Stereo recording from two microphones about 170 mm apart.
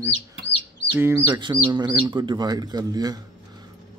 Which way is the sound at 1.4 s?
25° right (ahead or behind).